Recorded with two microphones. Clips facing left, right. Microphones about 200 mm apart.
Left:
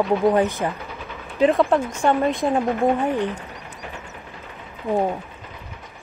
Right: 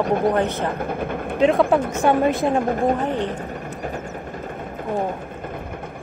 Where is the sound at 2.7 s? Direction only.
40° right (ahead or behind).